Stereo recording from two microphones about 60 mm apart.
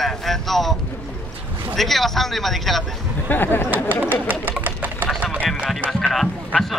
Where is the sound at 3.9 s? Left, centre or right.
Right.